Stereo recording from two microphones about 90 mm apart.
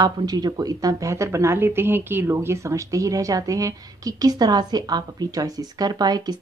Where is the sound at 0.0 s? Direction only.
50° right (ahead or behind).